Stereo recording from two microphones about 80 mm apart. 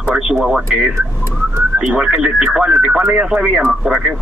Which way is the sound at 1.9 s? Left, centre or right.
Centre.